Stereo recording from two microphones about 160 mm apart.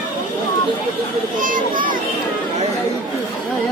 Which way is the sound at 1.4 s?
55° right (ahead or behind).